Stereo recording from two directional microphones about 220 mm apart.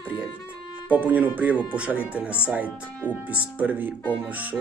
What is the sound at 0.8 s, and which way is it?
Speech, 5° right (ahead or behind).